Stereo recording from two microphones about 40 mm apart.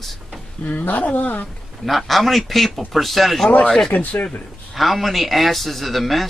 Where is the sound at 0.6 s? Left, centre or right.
Left.